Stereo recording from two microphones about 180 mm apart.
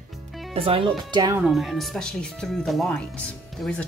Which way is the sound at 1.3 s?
Centre (ahead or behind).